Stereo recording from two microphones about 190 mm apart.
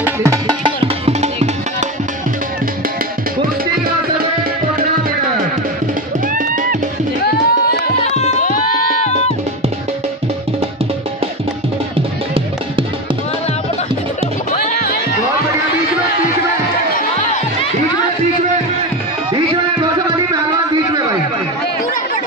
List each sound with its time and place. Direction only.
0.0 s music: 15° right (ahead or behind)
0.7 s music: 35° right (ahead or behind)
6.2 s music: 45° right (ahead or behind)
7.2 s music: 55° left (ahead or behind)
8.0 s music: 35° left (ahead or behind)